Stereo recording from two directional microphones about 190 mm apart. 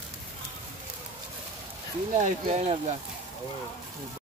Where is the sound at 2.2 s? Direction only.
35° right (ahead or behind).